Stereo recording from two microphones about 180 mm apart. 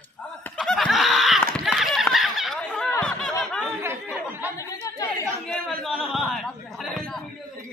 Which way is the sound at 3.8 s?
10° right (ahead or behind).